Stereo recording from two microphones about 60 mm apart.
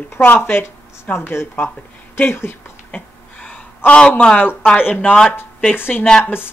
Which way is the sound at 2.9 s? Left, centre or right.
Left.